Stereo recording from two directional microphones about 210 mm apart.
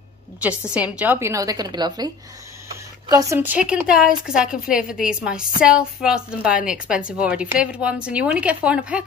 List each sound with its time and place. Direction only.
0.7 s a woman's voice: 5° right (ahead or behind)